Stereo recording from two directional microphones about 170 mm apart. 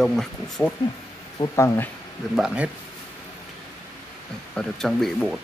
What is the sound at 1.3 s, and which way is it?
Speech, 15° left (ahead or behind).